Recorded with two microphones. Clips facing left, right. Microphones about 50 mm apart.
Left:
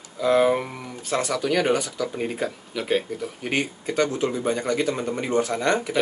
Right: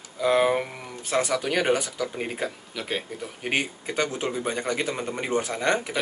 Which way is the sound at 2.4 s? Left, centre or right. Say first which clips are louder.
Left 5 dB; centre.